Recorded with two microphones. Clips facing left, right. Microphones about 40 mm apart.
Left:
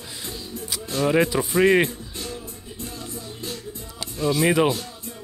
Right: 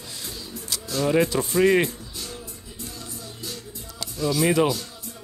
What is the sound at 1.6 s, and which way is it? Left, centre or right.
Music, left.